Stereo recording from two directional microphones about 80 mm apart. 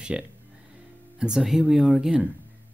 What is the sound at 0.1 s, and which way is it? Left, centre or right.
Speech, centre.